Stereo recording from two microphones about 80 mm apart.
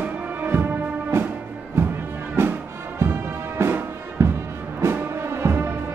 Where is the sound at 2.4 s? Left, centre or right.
Right.